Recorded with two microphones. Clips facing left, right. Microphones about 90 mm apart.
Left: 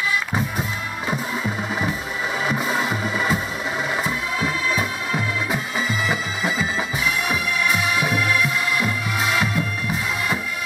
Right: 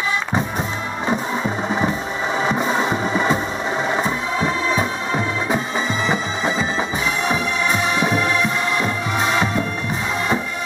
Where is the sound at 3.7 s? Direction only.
35° right (ahead or behind).